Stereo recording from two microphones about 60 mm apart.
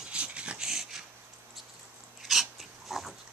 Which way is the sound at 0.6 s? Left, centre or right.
Centre.